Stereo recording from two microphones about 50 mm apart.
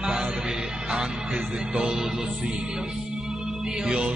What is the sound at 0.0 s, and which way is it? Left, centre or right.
Music, right.